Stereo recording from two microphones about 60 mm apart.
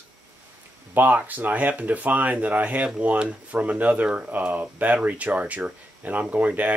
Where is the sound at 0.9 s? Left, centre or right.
Right.